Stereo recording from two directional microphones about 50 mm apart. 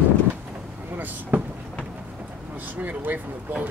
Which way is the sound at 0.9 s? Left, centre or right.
Right.